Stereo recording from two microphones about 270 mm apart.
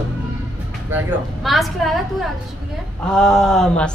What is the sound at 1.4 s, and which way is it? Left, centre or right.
Speech, centre.